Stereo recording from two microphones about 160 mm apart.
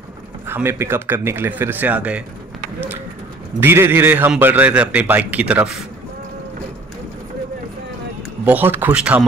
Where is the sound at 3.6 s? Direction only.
15° right (ahead or behind).